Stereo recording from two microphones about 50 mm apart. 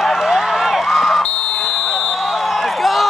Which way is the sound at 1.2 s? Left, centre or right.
Centre.